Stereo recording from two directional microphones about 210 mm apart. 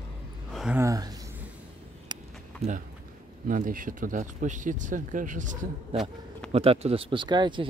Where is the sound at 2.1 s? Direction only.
20° right (ahead or behind).